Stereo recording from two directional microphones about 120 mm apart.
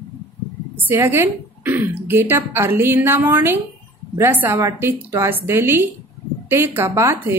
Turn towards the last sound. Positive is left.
turn(degrees=-20)  # may be behind; listen again after turning